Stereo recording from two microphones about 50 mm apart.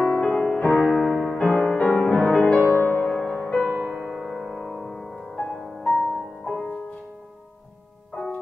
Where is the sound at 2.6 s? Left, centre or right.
Left.